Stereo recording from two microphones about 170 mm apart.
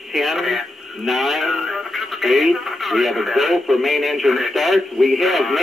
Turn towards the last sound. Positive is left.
turn(degrees=0)  # may be behind; listen again after turning